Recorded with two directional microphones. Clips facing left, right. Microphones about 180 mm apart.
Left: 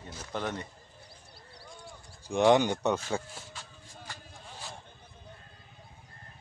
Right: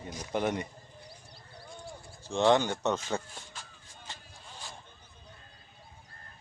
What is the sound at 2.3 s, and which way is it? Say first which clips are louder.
Speech: left 2 dB; 15° left (ahead or behind).